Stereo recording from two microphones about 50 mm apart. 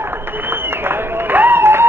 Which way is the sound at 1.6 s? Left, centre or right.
Right.